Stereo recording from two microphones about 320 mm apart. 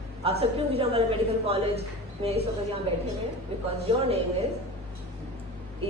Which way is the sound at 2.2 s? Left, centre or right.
Centre.